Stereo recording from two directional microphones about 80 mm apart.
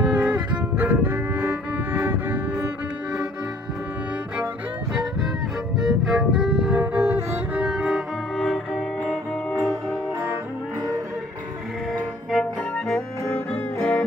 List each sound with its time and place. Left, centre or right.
0.0 s music: centre
5.8 s music: centre; by 7.6 s right
7.6 s music: centre
13.3 s music: centre